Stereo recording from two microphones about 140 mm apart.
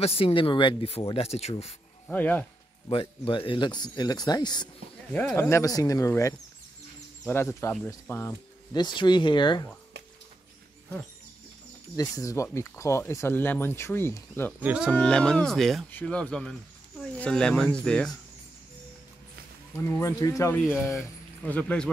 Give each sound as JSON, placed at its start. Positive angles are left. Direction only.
{"t": 0.0, "sound": "speech", "side_deg": 45}
{"t": 2.0, "sound": "speech", "side_deg": 10}
{"t": 2.9, "sound": "speech", "side_deg": 40}
{"t": 5.3, "sound": "speech", "side_deg": 20}
{"t": 8.7, "sound": "speech", "side_deg": 30}
{"t": 12.0, "sound": "speech", "side_deg": 25}
{"t": 14.6, "sound": "speech", "side_deg": -10}
{"t": 14.9, "sound": "speech", "side_deg": 5}
{"t": 19.9, "sound": "speech", "side_deg": 20}
{"t": 21.5, "sound": "speech", "side_deg": 10}